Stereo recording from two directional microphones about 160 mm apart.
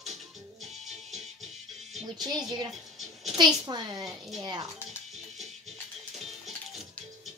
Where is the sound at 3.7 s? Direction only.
25° right (ahead or behind).